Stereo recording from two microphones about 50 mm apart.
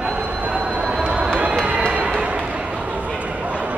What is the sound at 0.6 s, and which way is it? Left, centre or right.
Train, right.